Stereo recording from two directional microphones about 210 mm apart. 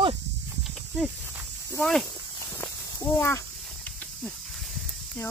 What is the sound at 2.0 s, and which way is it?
Walk, 15° left (ahead or behind).